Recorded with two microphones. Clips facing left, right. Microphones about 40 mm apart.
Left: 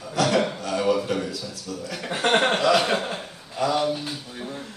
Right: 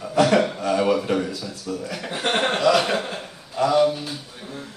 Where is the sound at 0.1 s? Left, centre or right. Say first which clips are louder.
Right 4 dB; right.